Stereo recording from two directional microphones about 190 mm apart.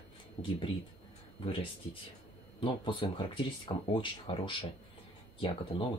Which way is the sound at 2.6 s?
25° left (ahead or behind).